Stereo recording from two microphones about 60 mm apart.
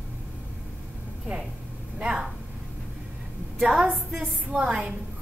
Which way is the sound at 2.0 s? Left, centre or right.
Centre.